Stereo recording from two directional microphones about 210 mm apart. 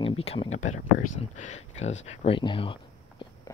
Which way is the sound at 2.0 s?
25° left (ahead or behind).